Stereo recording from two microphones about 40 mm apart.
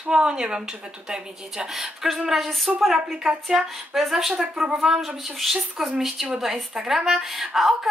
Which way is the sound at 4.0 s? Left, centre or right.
Centre.